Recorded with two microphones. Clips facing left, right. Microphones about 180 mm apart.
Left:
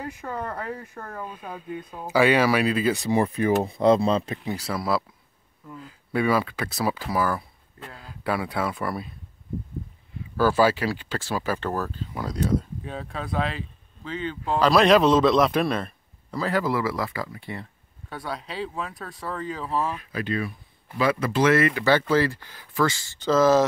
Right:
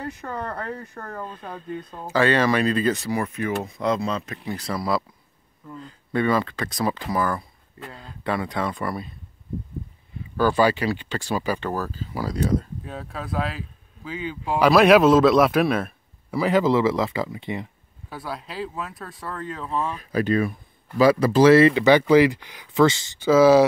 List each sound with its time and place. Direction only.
0.0 s speech: 10° left (ahead or behind)
3.1 s speech: 30° left (ahead or behind)
4.6 s speech: 5° left (ahead or behind)
10.3 s speech: 5° left (ahead or behind)
16.4 s speech: 20° right (ahead or behind)
18.1 s speech: 5° right (ahead or behind)
20.0 s speech: 40° right (ahead or behind); by 23.1 s 20° right (ahead or behind)
23.1 s speech: 10° right (ahead or behind)